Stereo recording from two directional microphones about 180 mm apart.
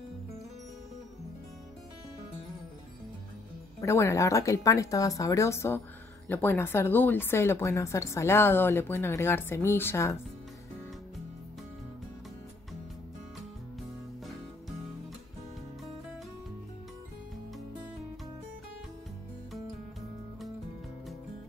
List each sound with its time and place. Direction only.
3.8 s a woman's voice: 15° left (ahead or behind)